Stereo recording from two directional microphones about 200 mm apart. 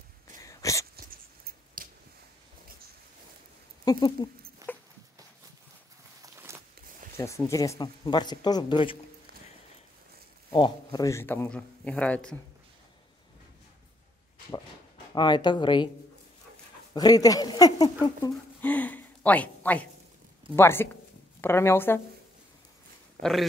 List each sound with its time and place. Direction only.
0.4 s a sound: 15° left (ahead or behind)
0.9 s a sound: 50° right (ahead or behind)
3.8 s speech: 20° left (ahead or behind)
4.6 s dog: 15° right (ahead or behind)
6.2 s a sound: 15° right (ahead or behind)
7.2 s speech: 15° left (ahead or behind)
10.5 s speech: 20° left (ahead or behind); by 12.4 s 5° left (ahead or behind)
15.1 s speech: 20° left (ahead or behind)
16.9 s speech: 20° left (ahead or behind)
18.6 s speech: 10° left (ahead or behind)
23.2 s speech: 50° right (ahead or behind)